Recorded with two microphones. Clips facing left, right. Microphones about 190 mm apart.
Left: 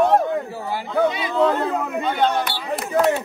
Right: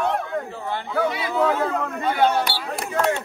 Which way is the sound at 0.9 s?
20° left (ahead or behind).